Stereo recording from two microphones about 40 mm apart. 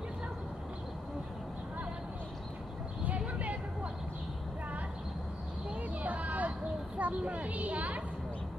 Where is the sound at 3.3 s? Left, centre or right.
Right.